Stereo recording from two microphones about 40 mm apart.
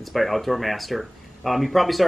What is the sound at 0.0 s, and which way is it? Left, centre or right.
Speech, centre.